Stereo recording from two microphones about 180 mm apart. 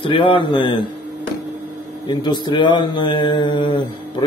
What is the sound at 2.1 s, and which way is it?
Speech, 25° left (ahead or behind).